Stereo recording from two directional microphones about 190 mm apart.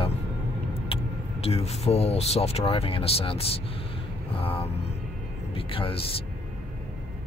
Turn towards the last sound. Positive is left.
turn(degrees=30)  # may be behind; listen again after turning